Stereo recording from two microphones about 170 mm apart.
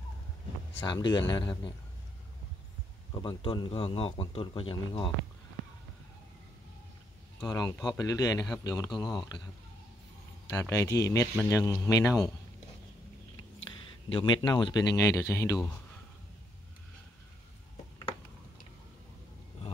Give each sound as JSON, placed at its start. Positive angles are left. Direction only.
{"t": 0.8, "sound": "speech", "side_deg": 25}
{"t": 3.2, "sound": "speech", "side_deg": 30}
{"t": 7.4, "sound": "speech", "side_deg": 20}
{"t": 10.5, "sound": "speech", "side_deg": 15}
{"t": 14.0, "sound": "speech", "side_deg": 30}